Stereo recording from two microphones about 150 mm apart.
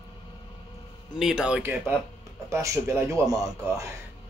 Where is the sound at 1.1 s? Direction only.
5° right (ahead or behind); by 3.5 s 25° right (ahead or behind).